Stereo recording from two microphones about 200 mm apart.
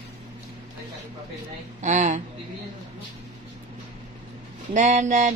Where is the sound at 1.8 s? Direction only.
35° right (ahead or behind).